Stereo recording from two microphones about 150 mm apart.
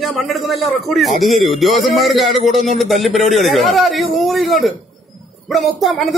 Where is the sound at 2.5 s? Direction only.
55° right (ahead or behind).